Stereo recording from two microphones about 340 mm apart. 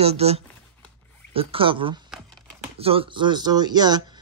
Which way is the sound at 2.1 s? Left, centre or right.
Centre.